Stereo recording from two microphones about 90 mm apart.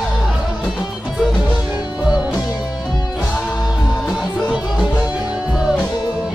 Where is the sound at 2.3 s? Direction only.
45° left (ahead or behind).